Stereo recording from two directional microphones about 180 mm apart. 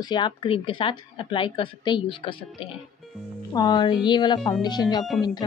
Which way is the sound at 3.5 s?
20° left (ahead or behind).